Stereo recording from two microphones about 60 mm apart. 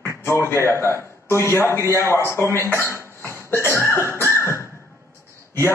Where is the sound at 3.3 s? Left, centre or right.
Left.